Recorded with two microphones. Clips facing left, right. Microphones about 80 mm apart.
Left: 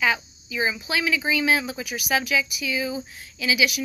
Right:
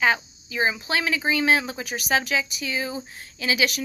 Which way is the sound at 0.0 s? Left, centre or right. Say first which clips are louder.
Right 2 dB; right.